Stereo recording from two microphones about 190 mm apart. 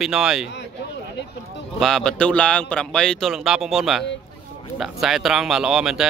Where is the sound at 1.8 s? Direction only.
Centre (ahead or behind).